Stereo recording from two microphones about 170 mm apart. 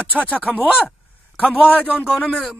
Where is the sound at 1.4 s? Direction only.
5° right (ahead or behind).